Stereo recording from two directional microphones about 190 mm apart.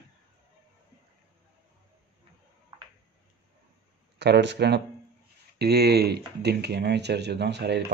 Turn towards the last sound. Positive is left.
turn(degrees=-60)  # may be behind; listen again after turning